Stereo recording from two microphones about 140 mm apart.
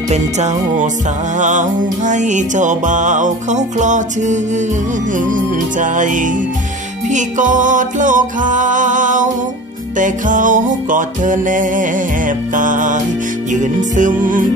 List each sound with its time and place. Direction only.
0.1 s music: 55° right (ahead or behind); by 14.4 s 70° right (ahead or behind)